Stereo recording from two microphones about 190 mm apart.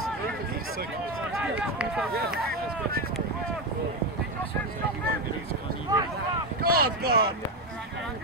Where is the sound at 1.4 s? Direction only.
5° right (ahead or behind).